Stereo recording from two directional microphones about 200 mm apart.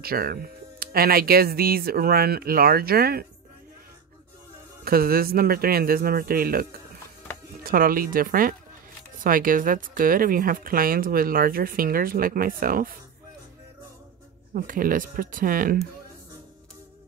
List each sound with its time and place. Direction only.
0.0 s speech: 50° right (ahead or behind)
4.8 s speech: 50° right (ahead or behind)
14.5 s speech: 45° right (ahead or behind)